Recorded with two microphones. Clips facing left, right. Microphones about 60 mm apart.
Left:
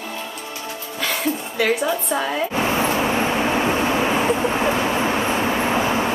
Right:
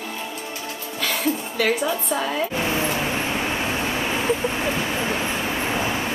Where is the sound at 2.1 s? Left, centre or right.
Centre.